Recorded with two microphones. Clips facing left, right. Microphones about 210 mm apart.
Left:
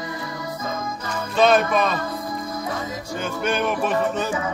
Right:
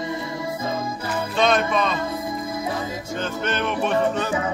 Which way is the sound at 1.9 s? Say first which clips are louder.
Right 1 dB; 25° right (ahead or behind).